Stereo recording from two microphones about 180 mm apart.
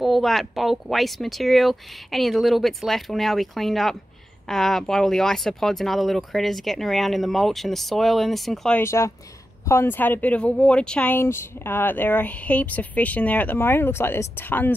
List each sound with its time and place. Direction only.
0.0 s speech: centre (ahead or behind)